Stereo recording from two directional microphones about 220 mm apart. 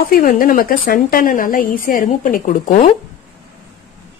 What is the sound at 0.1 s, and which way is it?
A woman's voice, 40° left (ahead or behind).